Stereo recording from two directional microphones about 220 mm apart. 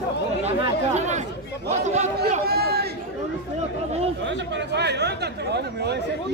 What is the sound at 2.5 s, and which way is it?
Chatter, 45° right (ahead or behind).